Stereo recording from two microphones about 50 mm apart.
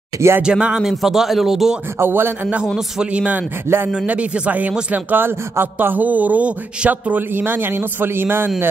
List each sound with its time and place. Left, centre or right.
0.4 s speech: centre
0.7 s speech: centre
2.0 s a man's voice: right
3.0 s speech: right
3.6 s a man's voice: right
3.9 s speech: right
4.9 s a man's voice: right